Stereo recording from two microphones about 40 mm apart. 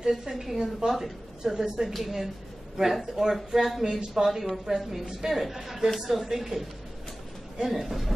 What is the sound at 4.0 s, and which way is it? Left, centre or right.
A man's voice, centre.